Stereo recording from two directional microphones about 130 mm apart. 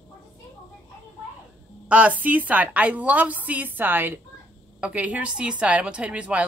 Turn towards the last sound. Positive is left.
turn(degrees=-10)  # may be behind; listen again after turning